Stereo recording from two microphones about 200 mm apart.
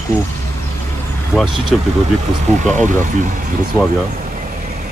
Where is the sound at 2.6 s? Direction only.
35° right (ahead or behind).